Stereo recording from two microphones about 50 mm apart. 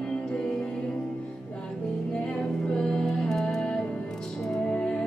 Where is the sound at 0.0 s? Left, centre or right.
Centre.